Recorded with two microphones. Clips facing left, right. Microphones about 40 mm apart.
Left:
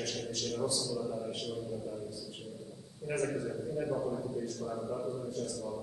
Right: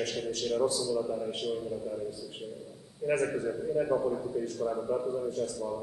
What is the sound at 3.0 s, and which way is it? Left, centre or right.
A man's voice, right.